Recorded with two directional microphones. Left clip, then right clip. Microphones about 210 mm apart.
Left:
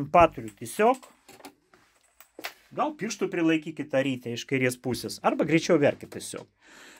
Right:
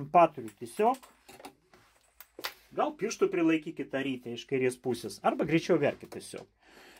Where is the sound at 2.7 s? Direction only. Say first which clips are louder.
Left 1 dB; 50° left (ahead or behind).